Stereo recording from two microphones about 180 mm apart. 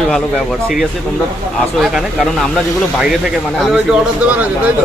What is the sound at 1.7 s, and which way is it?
Speech, centre (ahead or behind).